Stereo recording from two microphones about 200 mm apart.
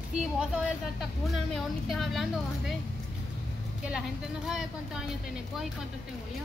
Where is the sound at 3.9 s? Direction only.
5° right (ahead or behind).